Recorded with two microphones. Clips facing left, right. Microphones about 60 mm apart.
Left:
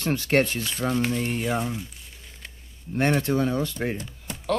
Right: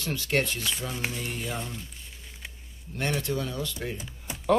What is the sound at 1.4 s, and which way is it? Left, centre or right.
Speech, left.